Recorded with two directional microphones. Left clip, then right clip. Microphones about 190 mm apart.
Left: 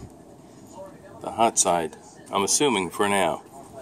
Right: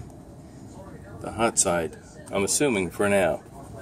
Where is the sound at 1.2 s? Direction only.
40° left (ahead or behind).